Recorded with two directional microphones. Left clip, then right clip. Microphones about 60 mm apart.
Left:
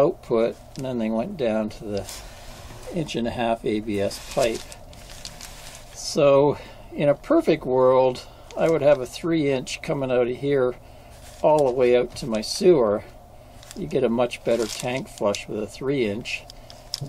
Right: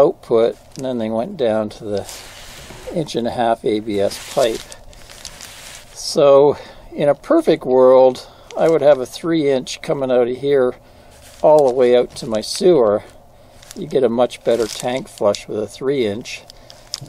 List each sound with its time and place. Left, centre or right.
0.0 s speech: centre
6.2 s speech: centre
9.9 s speech: centre
10.4 s speech: centre
11.4 s speech: centre
11.8 s speech: centre
16.9 s heart murmur: centre